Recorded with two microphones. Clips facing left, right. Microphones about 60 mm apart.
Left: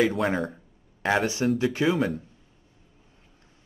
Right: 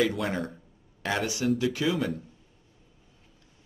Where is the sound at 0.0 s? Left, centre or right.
Left.